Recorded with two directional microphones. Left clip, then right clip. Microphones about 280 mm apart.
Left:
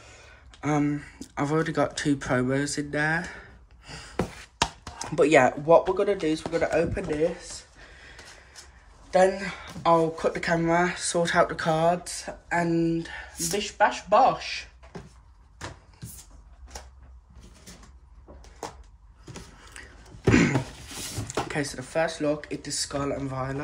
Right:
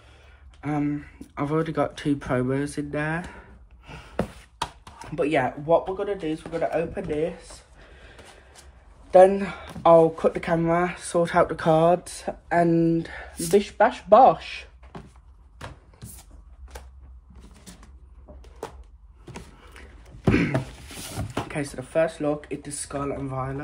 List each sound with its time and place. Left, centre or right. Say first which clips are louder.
0.6 s speech: left 1 dB; centre
4.9 s speech: left 4 dB; centre
9.1 s speech: right 6 dB; centre
20.2 s a sound: left 2 dB; centre
21.5 s speech: left 1 dB; centre